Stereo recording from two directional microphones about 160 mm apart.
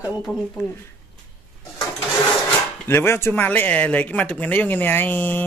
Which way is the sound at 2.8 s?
15° left (ahead or behind).